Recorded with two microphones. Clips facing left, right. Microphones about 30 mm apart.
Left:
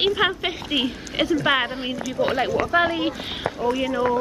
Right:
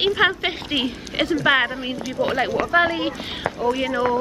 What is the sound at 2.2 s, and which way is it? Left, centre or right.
Speech, left.